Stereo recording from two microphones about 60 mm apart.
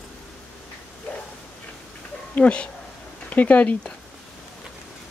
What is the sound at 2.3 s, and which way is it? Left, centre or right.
Speech, centre.